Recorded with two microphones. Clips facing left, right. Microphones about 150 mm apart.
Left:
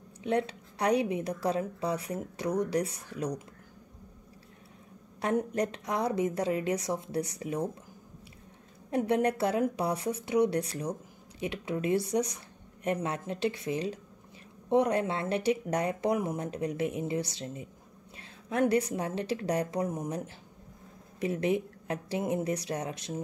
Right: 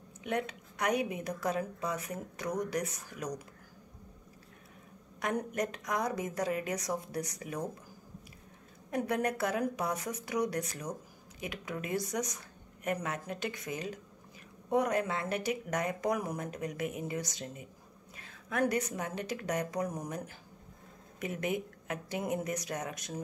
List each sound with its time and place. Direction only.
0.2 s speech: 30° left (ahead or behind)
5.2 s speech: 25° left (ahead or behind)
8.9 s a woman's voice: 25° left (ahead or behind)